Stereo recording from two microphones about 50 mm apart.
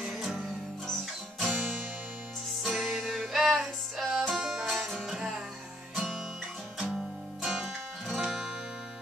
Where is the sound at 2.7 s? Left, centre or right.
Centre.